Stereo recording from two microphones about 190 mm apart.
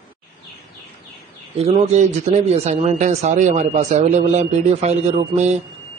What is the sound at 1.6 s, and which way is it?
A man's voice, 35° right (ahead or behind).